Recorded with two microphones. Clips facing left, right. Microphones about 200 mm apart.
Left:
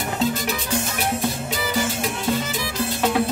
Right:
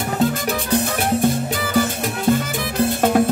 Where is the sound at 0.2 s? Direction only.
55° right (ahead or behind).